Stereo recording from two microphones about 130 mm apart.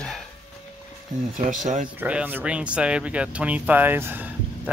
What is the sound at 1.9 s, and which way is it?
Speech, 10° right (ahead or behind).